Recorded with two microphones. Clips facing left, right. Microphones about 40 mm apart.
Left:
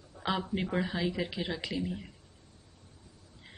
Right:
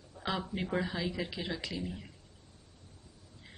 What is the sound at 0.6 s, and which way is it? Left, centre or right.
Speech, centre.